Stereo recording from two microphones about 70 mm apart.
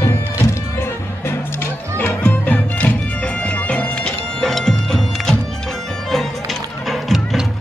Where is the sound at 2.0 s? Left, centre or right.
Left; by 5.3 s centre.